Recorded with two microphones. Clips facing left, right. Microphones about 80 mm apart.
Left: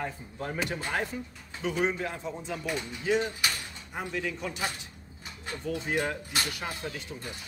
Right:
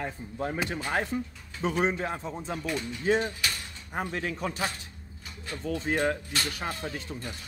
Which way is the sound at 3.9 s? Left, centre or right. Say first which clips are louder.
Right 2 dB; right.